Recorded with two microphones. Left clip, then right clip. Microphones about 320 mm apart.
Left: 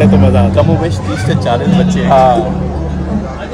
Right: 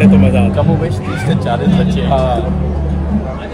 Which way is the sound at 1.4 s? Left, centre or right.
Left.